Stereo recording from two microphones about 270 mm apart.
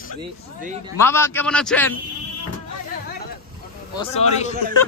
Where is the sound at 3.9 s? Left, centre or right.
Left.